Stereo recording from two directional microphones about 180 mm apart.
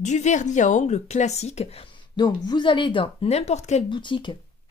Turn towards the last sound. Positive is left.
turn(degrees=25)  # may be behind; listen again after turning